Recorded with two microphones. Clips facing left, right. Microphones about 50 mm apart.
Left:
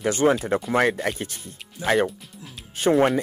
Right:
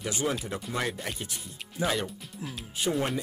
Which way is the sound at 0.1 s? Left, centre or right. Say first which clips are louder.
Left 11 dB; left.